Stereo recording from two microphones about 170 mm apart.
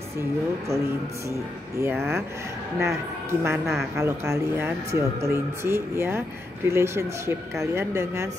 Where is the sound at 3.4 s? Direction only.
15° right (ahead or behind).